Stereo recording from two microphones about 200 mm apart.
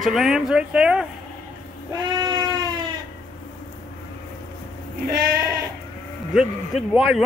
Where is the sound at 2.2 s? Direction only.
20° right (ahead or behind).